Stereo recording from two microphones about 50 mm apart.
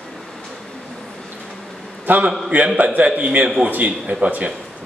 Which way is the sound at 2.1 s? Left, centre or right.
Right.